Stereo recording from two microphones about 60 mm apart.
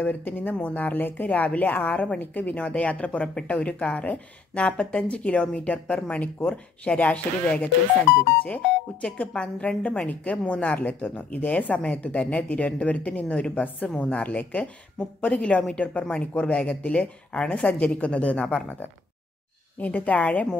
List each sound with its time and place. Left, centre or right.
0.0 s speech: left
9.0 s speech: centre
19.8 s speech: left